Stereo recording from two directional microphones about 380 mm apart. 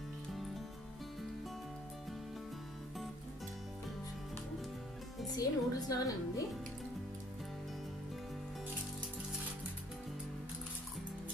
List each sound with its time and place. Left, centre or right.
5.2 s speech: centre